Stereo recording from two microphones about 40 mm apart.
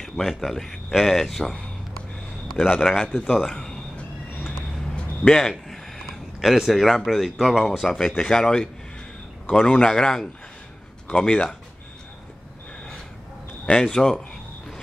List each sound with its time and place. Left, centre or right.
0.2 s speech: centre
5.3 s a sound: centre
6.5 s speech: centre
7.8 s a man's voice: centre; by 11.5 s left
13.7 s speech: centre